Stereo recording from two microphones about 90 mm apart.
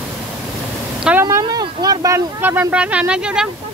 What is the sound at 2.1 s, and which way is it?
Speech, 20° right (ahead or behind).